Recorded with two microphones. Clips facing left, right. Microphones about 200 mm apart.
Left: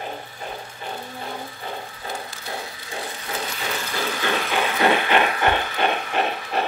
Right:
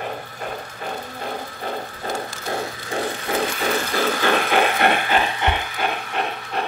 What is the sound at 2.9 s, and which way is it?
Ratchet, 60° right (ahead or behind).